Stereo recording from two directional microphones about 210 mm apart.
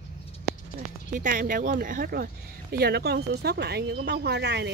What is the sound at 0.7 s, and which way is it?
Speech, 40° right (ahead or behind).